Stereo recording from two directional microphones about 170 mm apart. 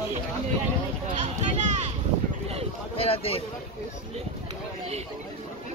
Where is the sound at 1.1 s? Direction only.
45° right (ahead or behind).